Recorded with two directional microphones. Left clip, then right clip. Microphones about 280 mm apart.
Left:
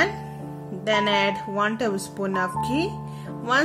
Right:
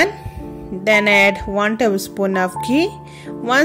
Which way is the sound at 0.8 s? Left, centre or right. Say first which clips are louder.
Right 9 dB; right.